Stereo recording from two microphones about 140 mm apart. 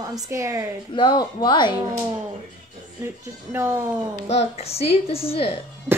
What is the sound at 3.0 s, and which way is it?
Speech, 15° right (ahead or behind).